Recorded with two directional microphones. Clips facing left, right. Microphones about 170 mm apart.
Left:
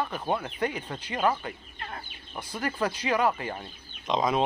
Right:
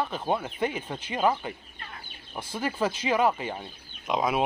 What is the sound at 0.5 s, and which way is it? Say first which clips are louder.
Speech: right 1 dB; 20° right (ahead or behind).